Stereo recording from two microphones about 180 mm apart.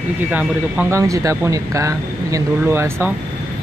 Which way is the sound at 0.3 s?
10° right (ahead or behind).